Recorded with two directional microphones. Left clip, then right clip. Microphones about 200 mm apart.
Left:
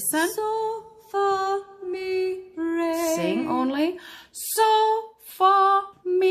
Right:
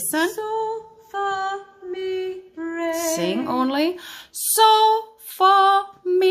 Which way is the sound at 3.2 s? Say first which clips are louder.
Right 2 dB; 15° right (ahead or behind).